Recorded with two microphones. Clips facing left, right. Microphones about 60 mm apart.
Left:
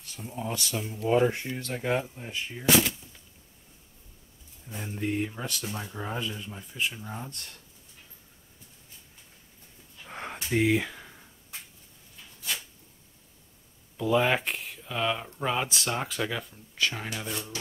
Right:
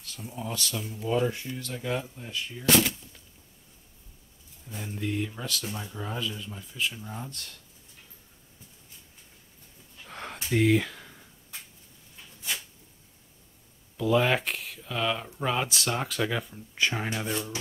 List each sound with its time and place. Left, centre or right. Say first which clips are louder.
0.2 s speech: left 2 dB; centre
0.5 s speech: left 1 dB; left
2.0 s speech: even; left
2.7 s speech: even; centre
4.6 s speech: left 1 dB; centre
7.2 s speech: right 1 dB; left
10.0 s a sound: left 1 dB; centre
13.9 s speech: even; centre
16.7 s speech: right 2 dB; centre